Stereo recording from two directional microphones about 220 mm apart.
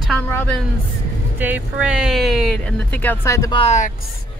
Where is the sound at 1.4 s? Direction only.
5° right (ahead or behind); by 3.6 s 15° left (ahead or behind).